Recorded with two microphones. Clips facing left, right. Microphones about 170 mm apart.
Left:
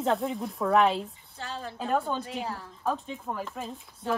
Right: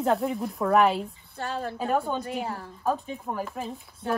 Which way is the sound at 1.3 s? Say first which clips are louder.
Right 6 dB; 60° right (ahead or behind).